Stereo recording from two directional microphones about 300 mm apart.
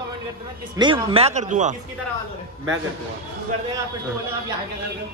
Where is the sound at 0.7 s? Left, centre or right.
Centre.